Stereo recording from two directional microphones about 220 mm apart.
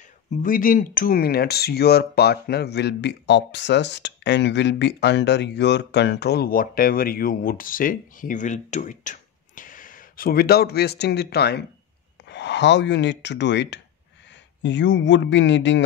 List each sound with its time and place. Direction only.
0.4 s a man's voice: 40° left (ahead or behind); by 15.8 s 55° left (ahead or behind)